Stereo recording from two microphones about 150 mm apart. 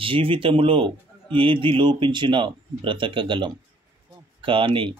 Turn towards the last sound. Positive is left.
turn(degrees=-35)  # may be behind; listen again after turning